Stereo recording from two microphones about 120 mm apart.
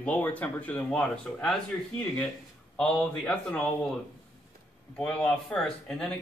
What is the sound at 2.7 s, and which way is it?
Speech, 5° left (ahead or behind).